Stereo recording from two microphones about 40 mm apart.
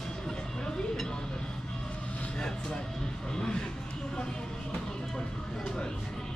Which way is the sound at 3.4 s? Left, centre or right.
Left.